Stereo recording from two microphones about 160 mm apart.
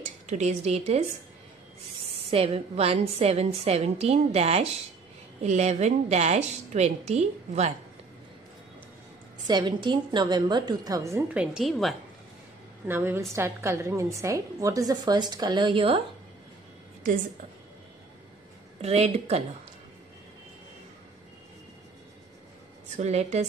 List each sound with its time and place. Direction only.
0.3 s a woman's voice: 45° right (ahead or behind)
2.1 s a woman's voice: 40° right (ahead or behind)
9.5 s a woman's voice: 30° right (ahead or behind); by 11.9 s 5° right (ahead or behind)
12.8 s a woman's voice: 15° right (ahead or behind); by 16.0 s 35° right (ahead or behind)
18.8 s a woman's voice: 40° right (ahead or behind)
22.9 s a woman's voice: 45° right (ahead or behind)